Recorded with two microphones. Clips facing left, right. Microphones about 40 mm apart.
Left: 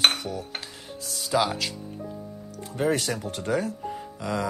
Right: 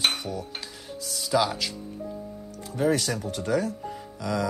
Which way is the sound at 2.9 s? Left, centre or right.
Left.